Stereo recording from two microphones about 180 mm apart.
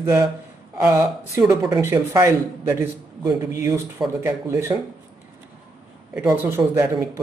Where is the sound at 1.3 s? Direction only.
15° right (ahead or behind).